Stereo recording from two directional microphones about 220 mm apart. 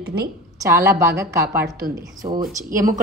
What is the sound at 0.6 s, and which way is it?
Speech, 15° right (ahead or behind).